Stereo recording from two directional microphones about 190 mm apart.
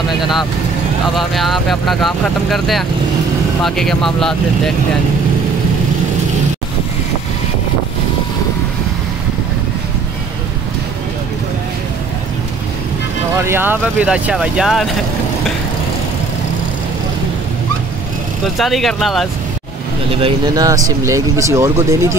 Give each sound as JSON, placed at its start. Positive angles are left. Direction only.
{"t": 1.1, "sound": "speech", "side_deg": 0}
{"t": 13.4, "sound": "speech", "side_deg": -10}
{"t": 18.6, "sound": "speech", "side_deg": 0}
{"t": 20.2, "sound": "speech", "side_deg": -25}